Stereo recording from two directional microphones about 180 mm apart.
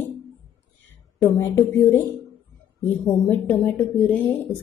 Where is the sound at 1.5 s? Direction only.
15° left (ahead or behind).